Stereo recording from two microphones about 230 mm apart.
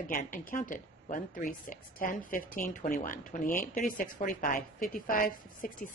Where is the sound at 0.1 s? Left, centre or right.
Left.